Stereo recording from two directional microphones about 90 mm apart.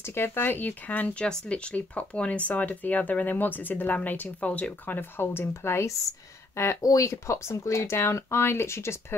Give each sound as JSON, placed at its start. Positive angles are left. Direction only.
{"t": 0.0, "sound": "speech", "side_deg": 25}